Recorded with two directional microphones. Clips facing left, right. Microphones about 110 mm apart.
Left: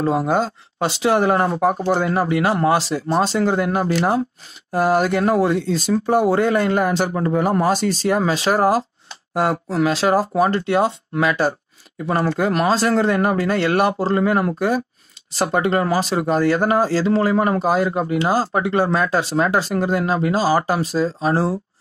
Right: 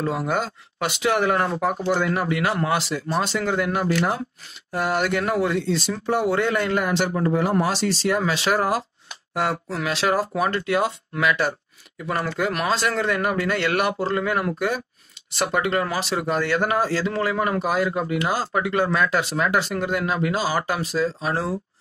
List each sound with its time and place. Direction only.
0.0 s speech: 30° left (ahead or behind)